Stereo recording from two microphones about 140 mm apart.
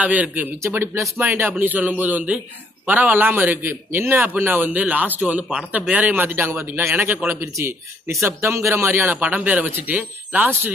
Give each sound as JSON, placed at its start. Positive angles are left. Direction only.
{"t": 0.0, "sound": "a man's voice", "side_deg": -10}